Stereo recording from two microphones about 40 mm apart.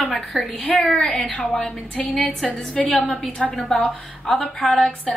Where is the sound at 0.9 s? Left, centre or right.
Centre.